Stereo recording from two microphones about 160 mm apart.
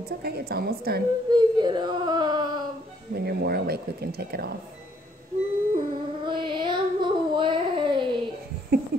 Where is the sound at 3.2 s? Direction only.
80° right.